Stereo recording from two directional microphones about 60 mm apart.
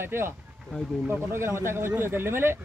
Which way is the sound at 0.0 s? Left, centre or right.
Right.